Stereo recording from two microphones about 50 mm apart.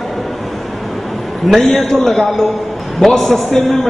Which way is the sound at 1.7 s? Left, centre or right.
Centre.